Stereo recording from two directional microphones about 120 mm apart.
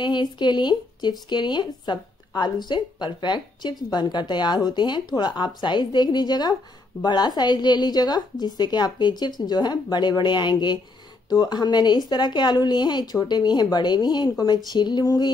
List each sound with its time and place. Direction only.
0.0 s a woman's voice: 40° left (ahead or behind)